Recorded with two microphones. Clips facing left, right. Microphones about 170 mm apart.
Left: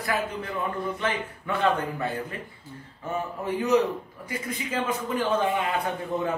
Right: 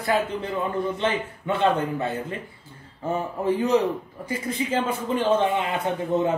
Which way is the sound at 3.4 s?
30° right (ahead or behind).